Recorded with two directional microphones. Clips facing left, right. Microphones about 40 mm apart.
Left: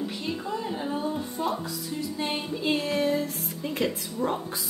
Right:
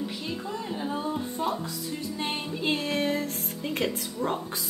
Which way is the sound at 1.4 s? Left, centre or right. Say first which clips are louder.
Left 2 dB; centre.